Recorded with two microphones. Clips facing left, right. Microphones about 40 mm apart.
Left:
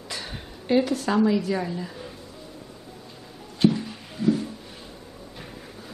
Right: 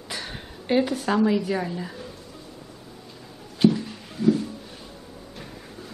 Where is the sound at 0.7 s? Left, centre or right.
Centre.